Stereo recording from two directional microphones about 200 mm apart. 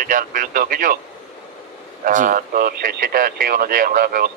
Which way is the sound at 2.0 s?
40° right (ahead or behind).